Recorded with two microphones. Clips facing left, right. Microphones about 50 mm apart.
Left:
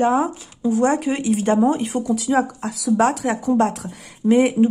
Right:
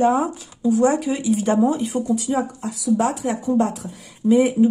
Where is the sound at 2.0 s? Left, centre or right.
Left.